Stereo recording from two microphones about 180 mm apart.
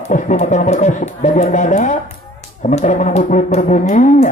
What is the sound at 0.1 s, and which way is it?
Speech, 40° left (ahead or behind).